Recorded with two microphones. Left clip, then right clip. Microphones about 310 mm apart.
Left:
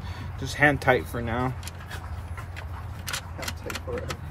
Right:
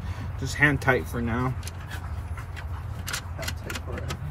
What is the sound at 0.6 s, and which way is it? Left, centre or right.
Speech, left.